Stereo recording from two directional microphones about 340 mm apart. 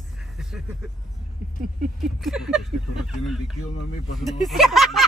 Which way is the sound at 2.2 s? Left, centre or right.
Centre.